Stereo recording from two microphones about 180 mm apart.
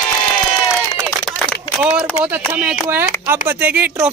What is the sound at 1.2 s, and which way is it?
Run, centre (ahead or behind).